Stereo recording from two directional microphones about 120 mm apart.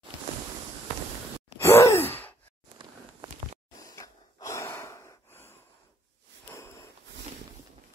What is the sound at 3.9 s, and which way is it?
Gasp, 25° left (ahead or behind).